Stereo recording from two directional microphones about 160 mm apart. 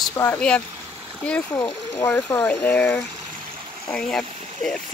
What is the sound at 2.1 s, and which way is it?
Speech, 20° left (ahead or behind).